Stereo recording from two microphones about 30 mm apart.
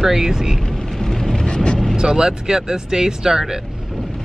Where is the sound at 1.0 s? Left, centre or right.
Centre.